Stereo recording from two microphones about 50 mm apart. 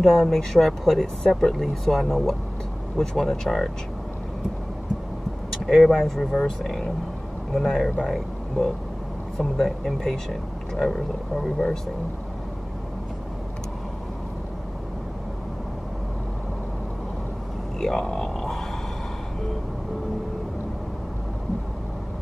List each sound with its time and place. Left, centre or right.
0.0 s speech: centre
5.7 s speech: centre
7.5 s speech: centre
17.7 s speech: centre